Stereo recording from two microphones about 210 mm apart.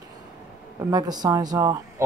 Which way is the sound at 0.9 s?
20° right (ahead or behind).